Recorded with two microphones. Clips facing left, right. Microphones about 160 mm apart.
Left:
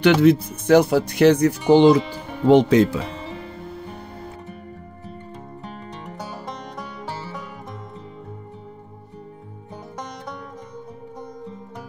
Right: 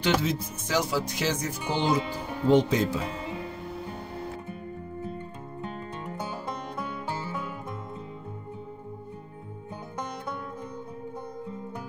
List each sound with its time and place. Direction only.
0.0 s speech: 65° left (ahead or behind)